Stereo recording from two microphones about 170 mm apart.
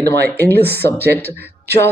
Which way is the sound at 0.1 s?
70° right (ahead or behind).